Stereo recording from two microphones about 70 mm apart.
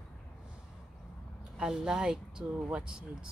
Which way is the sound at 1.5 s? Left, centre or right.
Centre.